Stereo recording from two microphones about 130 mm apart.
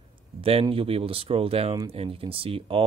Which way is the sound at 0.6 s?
45° right (ahead or behind).